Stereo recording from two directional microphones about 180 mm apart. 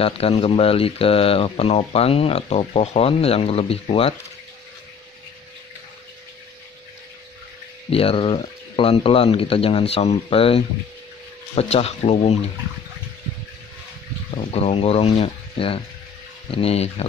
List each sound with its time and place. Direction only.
0.0 s speech: 30° left (ahead or behind)
7.9 s speech: 30° left (ahead or behind)
14.3 s speech: 35° left (ahead or behind)